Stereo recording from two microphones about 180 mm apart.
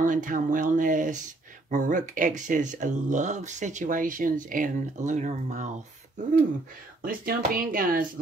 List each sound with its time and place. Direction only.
0.0 s speech: 45° right (ahead or behind)
7.0 s speech: 50° right (ahead or behind)